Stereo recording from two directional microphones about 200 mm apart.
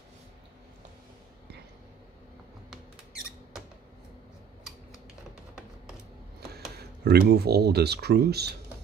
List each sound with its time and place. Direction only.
6.8 s speech: 50° right (ahead or behind)